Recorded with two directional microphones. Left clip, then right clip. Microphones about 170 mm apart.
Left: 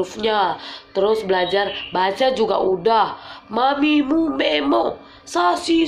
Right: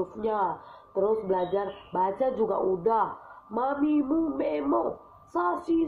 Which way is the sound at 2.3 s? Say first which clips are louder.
Left 9 dB; 25° left (ahead or behind).